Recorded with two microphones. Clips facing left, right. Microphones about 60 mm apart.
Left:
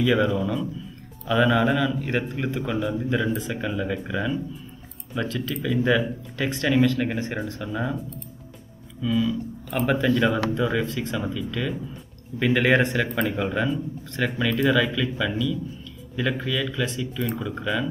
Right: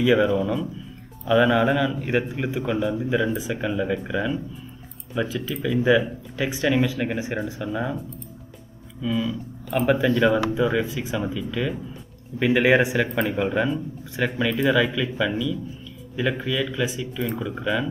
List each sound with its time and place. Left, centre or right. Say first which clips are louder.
0.0 s speech: right 2 dB; centre
9.0 s speech: left 2 dB; centre